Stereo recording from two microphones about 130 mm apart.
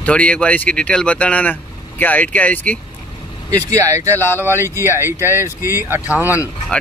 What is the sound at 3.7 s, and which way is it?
Speech, 25° right (ahead or behind).